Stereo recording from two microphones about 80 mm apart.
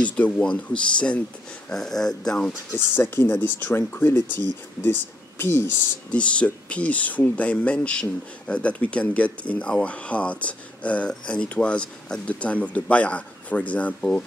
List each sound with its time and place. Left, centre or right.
0.0 s speech: centre
2.7 s speech: left
6.0 s speech: centre